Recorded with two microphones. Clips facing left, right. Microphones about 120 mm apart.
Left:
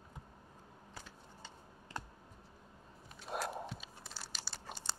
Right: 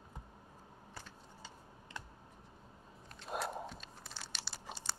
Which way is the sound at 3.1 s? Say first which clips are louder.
Even; centre (ahead or behind).